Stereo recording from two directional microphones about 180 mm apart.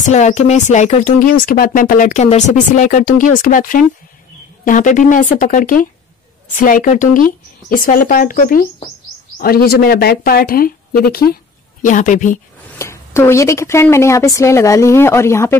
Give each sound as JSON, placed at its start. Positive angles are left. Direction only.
{"t": 0.0, "sound": "speech", "side_deg": 40}
{"t": 11.8, "sound": "speech", "side_deg": 45}
{"t": 12.7, "sound": "speech", "side_deg": 15}